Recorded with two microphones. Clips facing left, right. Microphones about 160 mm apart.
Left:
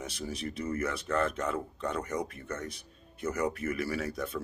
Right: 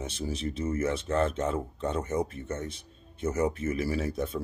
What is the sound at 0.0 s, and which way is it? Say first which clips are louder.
Speech: right 4 dB; 25° right (ahead or behind).